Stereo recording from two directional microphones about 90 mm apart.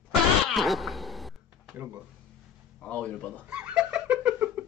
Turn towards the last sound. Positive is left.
turn(degrees=-10)  # may be behind; listen again after turning